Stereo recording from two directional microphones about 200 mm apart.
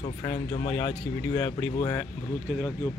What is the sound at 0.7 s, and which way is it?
Speech, 10° left (ahead or behind).